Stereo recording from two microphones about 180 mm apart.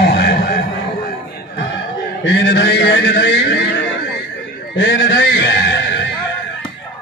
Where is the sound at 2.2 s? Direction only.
70° left (ahead or behind).